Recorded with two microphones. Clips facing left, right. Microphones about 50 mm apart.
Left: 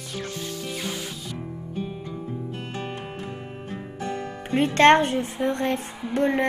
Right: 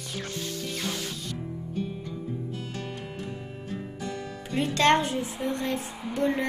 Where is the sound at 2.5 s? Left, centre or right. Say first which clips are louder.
Left 3 dB; left.